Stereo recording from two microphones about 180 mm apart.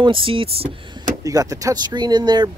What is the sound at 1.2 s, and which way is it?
Speech, 20° right (ahead or behind).